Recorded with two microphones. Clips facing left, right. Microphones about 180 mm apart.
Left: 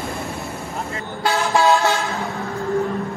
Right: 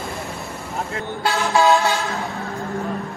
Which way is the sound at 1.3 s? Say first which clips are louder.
Even; centre (ahead or behind).